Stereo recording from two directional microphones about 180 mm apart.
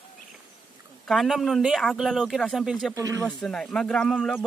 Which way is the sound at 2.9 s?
20° right (ahead or behind).